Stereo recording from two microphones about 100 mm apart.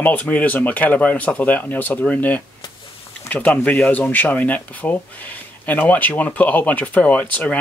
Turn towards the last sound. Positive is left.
turn(degrees=15)  # may be behind; listen again after turning